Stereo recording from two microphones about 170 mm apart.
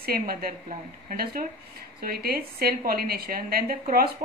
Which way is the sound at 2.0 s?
65° right (ahead or behind).